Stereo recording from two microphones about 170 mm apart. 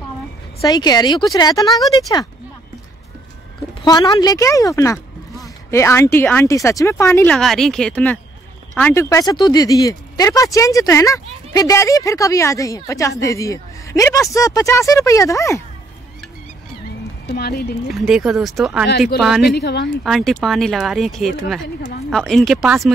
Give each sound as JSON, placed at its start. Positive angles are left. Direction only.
{"t": 0.6, "sound": "speech", "side_deg": 25}
{"t": 3.8, "sound": "speech", "side_deg": 25}
{"t": 7.3, "sound": "speech", "side_deg": 0}
{"t": 17.3, "sound": "speech", "side_deg": 70}
{"t": 17.8, "sound": "speech", "side_deg": 0}
{"t": 19.5, "sound": "speech", "side_deg": 80}
{"t": 20.0, "sound": "speech", "side_deg": 0}